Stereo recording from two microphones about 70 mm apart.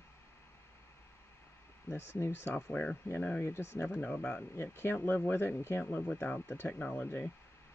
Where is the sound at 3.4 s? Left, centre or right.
Left.